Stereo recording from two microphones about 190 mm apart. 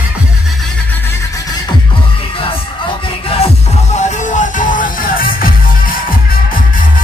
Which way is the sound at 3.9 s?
40° left (ahead or behind).